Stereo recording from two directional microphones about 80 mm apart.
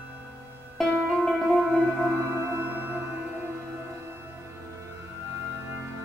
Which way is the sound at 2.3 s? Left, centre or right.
Right.